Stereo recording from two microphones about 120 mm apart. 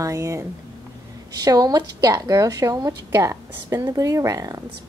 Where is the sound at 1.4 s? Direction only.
30° right (ahead or behind).